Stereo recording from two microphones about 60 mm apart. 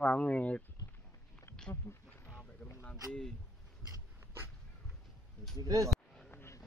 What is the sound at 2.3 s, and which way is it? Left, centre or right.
Boat, left.